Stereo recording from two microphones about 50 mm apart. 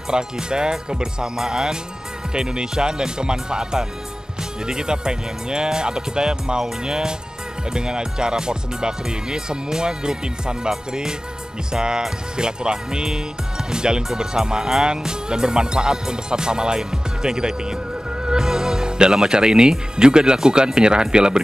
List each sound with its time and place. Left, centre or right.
0.1 s speech: centre